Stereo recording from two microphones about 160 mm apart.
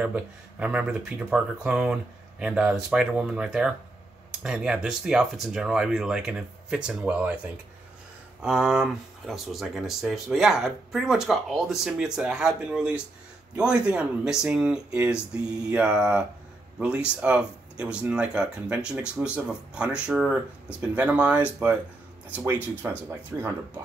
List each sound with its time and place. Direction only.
0.0 s speech: 5° right (ahead or behind)
8.4 s speech: 5° right (ahead or behind)